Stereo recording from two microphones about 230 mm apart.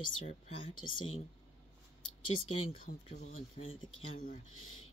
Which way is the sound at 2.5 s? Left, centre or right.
Left.